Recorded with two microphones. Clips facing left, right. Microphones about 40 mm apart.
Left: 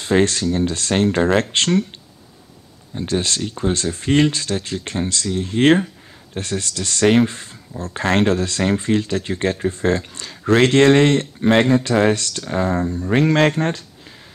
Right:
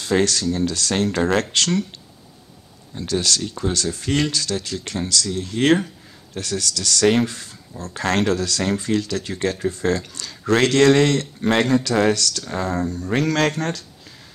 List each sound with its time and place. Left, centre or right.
0.0 s speech: left
2.9 s speech: left